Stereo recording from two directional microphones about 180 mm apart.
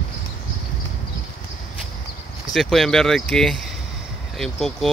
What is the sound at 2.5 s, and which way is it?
Speech, centre (ahead or behind).